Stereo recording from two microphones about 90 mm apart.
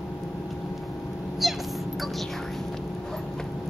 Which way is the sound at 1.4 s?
Centre (ahead or behind).